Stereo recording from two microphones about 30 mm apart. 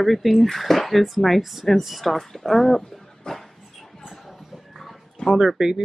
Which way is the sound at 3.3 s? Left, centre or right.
Left.